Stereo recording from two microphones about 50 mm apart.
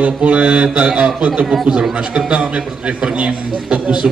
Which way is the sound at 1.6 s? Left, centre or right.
Centre.